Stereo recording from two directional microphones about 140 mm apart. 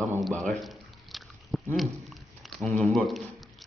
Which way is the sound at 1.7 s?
Centre (ahead or behind).